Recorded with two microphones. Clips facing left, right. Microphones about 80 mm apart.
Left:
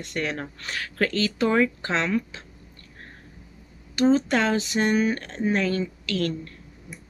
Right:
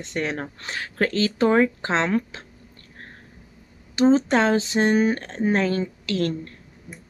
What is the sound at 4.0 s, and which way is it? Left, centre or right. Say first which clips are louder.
Speech: right 3 dB; right.